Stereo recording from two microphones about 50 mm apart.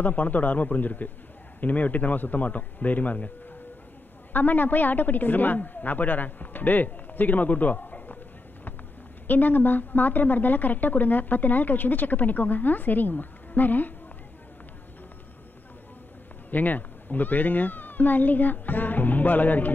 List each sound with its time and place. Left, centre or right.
0.0 s a woman's voice: left
4.3 s a woman's voice: left
9.3 s a woman's voice: left
16.4 s a woman's voice: left